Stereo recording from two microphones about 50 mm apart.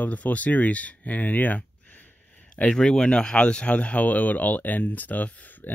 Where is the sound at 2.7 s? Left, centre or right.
Centre.